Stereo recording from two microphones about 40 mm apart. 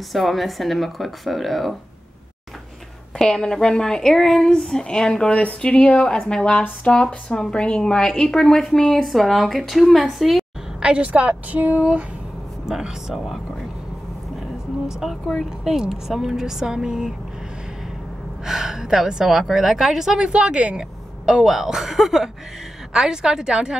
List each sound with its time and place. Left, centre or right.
0.1 s speech: centre
3.2 s speech: centre
5.3 s speech: left
5.6 s speech: left; by 10.4 s centre
10.8 s a woman's voice: right
11.1 s a sound: right
12.6 s speech: centre
14.9 s speech: centre
15.6 s a woman's voice: centre
18.4 s a woman's voice: centre
21.3 s a woman's voice: centre